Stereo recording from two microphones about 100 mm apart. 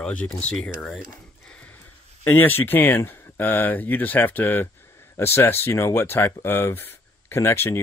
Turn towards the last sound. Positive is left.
turn(degrees=25)  # may be behind; listen again after turning